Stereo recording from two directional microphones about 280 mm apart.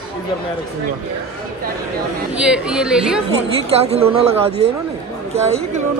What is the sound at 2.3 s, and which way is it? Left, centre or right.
Speech, centre.